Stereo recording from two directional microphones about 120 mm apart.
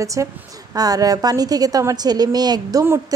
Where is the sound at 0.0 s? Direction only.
25° right (ahead or behind).